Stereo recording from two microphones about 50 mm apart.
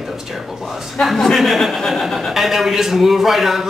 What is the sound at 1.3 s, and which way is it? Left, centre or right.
A man's voice, centre.